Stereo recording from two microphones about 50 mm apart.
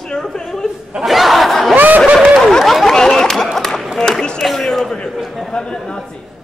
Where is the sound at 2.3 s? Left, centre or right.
Centre.